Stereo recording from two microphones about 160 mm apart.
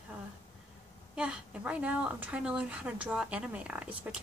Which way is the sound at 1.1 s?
5° right (ahead or behind).